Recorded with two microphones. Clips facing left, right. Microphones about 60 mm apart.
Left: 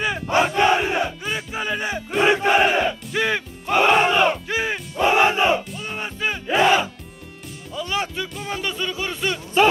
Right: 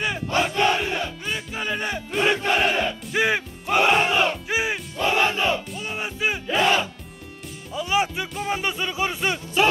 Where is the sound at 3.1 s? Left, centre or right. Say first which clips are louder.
Right 3 dB; centre.